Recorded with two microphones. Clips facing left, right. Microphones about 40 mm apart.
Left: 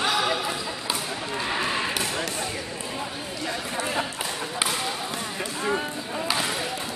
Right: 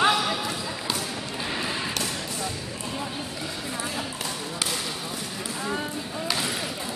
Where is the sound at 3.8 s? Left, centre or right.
Left.